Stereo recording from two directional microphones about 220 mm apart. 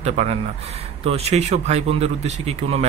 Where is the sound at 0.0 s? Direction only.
30° right (ahead or behind).